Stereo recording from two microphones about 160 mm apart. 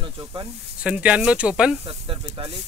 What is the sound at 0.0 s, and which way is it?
Snake, 20° right (ahead or behind).